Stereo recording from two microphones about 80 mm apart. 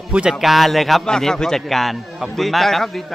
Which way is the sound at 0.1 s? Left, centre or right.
Centre.